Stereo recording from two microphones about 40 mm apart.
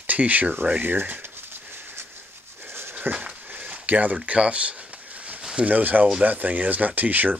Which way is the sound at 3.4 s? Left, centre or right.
Right.